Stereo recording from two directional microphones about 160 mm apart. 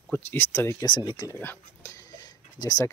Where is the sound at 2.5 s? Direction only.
25° left (ahead or behind).